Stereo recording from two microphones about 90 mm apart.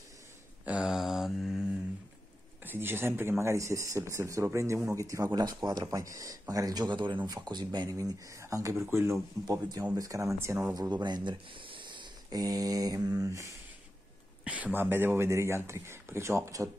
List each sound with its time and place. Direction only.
0.7 s mantra: 10° right (ahead or behind)
2.6 s speech: 25° right (ahead or behind); by 5.9 s 55° right (ahead or behind)
5.9 s speech: 40° right (ahead or behind)
10.7 s speech: 50° right (ahead or behind); by 12.1 s 65° right (ahead or behind)
12.3 s speech: 45° right (ahead or behind)
14.4 s a man's voice: 15° right (ahead or behind); by 16.7 s 35° right (ahead or behind)